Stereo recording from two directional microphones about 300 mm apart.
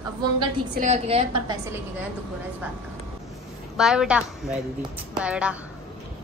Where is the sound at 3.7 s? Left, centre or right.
Centre.